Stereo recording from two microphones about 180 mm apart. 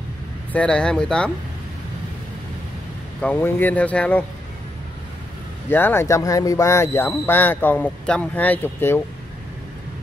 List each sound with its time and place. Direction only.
0.5 s speech: 5° left (ahead or behind)
3.2 s speech: 10° left (ahead or behind)
5.7 s speech: 10° left (ahead or behind)